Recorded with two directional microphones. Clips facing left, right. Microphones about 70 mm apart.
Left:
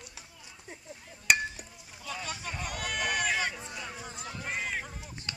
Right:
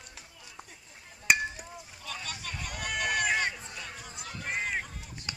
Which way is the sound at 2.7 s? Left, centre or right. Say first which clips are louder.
Right 2 dB; centre.